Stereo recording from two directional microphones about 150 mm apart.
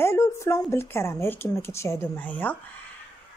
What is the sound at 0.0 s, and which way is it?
A woman's voice, 20° left (ahead or behind).